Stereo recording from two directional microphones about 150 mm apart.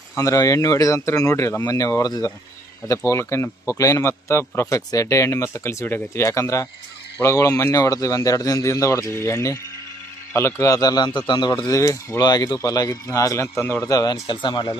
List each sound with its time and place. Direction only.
0.1 s speech: 20° left (ahead or behind)
13.9 s speech: 25° left (ahead or behind)